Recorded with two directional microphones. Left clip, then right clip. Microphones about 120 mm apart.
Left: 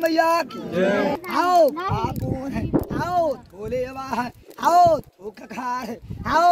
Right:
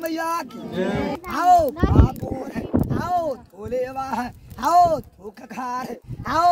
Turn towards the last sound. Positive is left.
turn(degrees=-30)  # may be behind; listen again after turning